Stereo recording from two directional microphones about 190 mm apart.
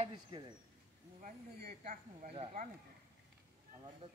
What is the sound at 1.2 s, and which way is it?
Speech, 40° right (ahead or behind).